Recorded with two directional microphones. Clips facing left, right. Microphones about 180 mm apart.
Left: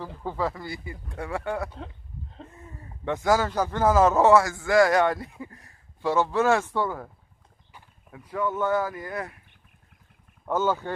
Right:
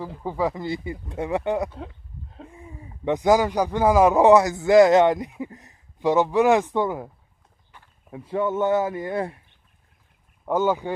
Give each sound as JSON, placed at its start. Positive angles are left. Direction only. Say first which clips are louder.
{"t": 0.0, "sound": "speech", "louder": "right 4 dB", "side_deg": -10}
{"t": 8.1, "sound": "speech", "louder": "right 4 dB", "side_deg": -25}
{"t": 10.4, "sound": "speech", "louder": "right 3 dB", "side_deg": -15}